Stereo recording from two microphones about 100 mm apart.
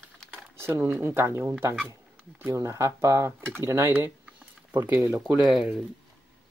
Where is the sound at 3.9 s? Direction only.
15° right (ahead or behind).